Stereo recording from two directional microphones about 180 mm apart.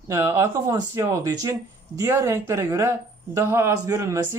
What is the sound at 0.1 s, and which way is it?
Speech, 15° right (ahead or behind).